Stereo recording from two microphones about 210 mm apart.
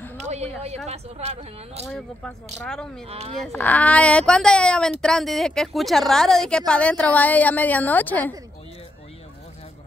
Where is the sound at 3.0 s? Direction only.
30° right (ahead or behind).